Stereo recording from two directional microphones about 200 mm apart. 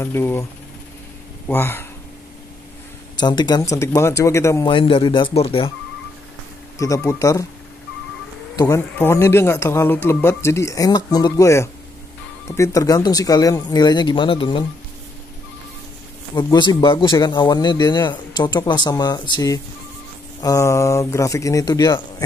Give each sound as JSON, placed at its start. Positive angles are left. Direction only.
{"t": 0.0, "sound": "speech", "side_deg": 10}
{"t": 1.5, "sound": "speech", "side_deg": 10}
{"t": 3.2, "sound": "speech", "side_deg": 20}
{"t": 4.6, "sound": "a man's voice", "side_deg": 25}
{"t": 6.8, "sound": "speech", "side_deg": 15}
{"t": 8.5, "sound": "a man's voice", "side_deg": 15}
{"t": 16.3, "sound": "a man's voice", "side_deg": 20}